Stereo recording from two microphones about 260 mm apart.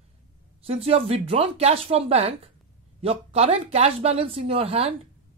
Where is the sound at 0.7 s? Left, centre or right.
Right.